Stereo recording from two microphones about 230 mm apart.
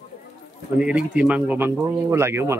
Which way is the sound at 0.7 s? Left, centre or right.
Centre.